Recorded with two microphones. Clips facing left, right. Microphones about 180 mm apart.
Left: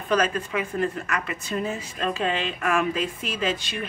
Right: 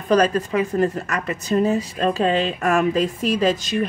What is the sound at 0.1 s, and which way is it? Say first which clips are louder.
A man's voice: right 6 dB; 40° right (ahead or behind).